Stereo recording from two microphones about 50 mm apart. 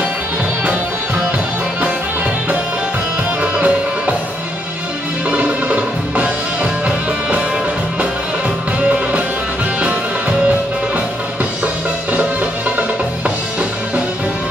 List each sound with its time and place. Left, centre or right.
3.5 s music: right
5.3 s music: right
11.6 s music: right